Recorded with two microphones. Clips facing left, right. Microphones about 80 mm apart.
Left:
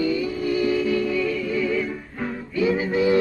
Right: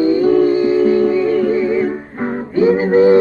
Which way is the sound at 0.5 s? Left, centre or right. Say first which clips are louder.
Right 9 dB; right.